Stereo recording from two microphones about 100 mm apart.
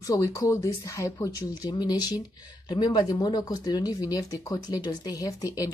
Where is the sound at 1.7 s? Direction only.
45° left (ahead or behind).